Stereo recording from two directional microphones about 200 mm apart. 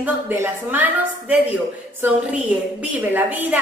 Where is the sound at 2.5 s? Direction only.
10° right (ahead or behind).